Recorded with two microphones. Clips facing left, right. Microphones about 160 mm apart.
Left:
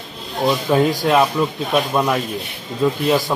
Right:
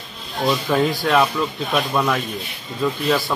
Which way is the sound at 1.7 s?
15° left (ahead or behind).